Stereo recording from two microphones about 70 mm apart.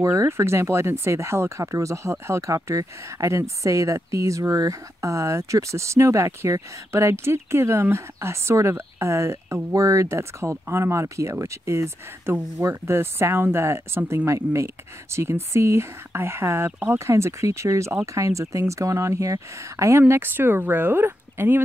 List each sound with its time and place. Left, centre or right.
0.0 s speech: right